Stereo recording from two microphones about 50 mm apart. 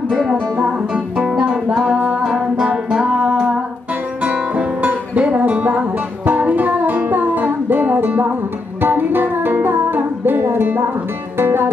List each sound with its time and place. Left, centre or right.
0.1 s music: centre
1.2 s music: centre; by 11.7 s right